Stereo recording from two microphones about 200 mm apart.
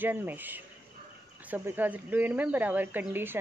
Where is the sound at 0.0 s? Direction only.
10° right (ahead or behind).